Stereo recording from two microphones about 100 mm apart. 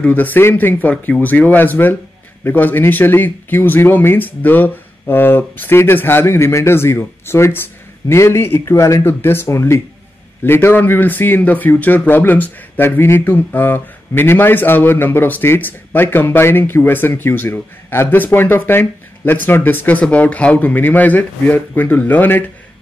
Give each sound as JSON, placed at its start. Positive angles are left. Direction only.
{"t": 0.0, "sound": "speech", "side_deg": 15}